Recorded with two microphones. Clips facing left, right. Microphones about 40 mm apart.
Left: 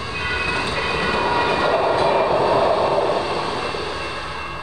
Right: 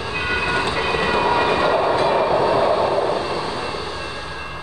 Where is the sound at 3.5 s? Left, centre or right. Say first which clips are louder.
Left 1 dB; left.